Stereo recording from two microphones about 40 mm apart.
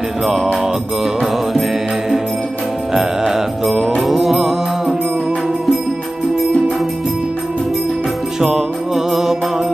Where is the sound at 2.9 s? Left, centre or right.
Centre.